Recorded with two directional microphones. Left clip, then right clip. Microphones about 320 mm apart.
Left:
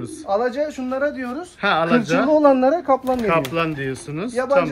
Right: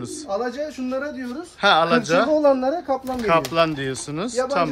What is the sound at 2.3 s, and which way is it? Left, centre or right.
Speech, left.